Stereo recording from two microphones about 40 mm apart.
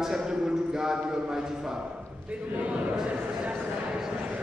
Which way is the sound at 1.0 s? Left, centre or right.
Centre.